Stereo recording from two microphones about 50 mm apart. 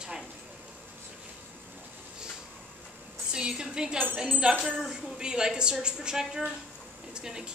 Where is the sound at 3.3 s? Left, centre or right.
Centre.